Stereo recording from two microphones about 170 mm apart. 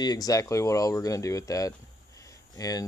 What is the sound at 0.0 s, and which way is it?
Speech, 20° left (ahead or behind).